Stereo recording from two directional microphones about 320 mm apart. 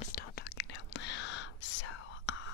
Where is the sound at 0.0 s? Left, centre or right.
Left.